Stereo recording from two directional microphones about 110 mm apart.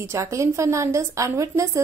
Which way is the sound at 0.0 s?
25° right (ahead or behind).